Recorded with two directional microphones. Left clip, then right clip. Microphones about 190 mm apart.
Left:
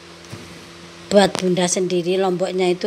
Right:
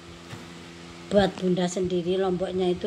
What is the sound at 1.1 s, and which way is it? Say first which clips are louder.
A woman's voice: left 7 dB; 15° left (ahead or behind).